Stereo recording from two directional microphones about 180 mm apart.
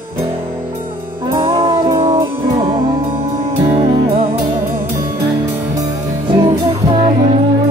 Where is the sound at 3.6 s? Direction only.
30° right (ahead or behind).